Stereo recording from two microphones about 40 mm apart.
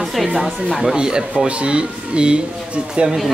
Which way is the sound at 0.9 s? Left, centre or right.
Centre.